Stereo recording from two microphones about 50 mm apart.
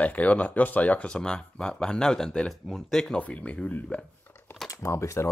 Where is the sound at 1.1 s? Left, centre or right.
Centre.